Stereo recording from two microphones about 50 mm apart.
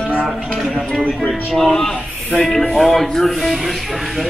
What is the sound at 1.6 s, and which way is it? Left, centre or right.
Speech, centre.